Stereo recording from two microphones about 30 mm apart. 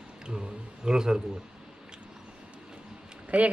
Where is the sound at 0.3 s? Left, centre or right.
Right.